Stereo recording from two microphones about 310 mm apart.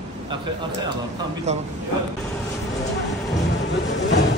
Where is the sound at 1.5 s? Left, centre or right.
Right.